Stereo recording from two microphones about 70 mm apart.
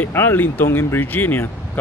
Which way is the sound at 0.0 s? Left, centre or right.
Left.